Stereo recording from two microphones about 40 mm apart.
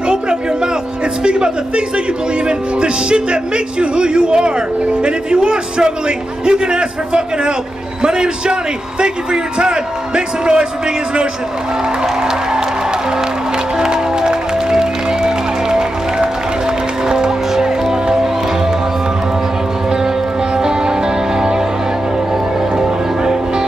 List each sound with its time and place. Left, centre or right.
1.2 s a man's voice: right
13.7 s music: centre
20.5 s music: centre